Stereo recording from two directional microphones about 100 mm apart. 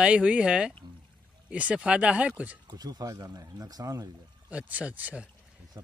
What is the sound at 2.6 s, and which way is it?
Speech, 40° right (ahead or behind).